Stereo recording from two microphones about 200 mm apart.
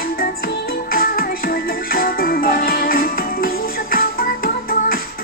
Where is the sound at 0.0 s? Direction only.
50° left (ahead or behind).